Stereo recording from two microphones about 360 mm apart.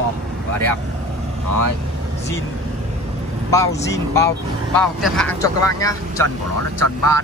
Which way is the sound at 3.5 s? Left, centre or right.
Centre.